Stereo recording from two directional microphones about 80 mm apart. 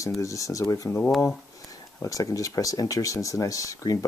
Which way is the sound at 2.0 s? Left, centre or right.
Left.